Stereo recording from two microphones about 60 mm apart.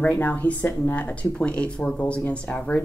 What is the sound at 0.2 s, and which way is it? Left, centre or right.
Speech, left.